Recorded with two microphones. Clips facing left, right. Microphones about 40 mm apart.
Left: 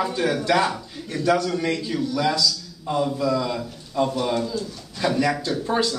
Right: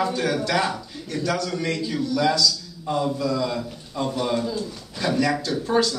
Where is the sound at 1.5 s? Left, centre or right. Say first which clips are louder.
Left 2 dB; centre.